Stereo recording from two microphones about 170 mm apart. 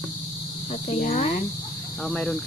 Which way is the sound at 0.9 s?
50° left (ahead or behind).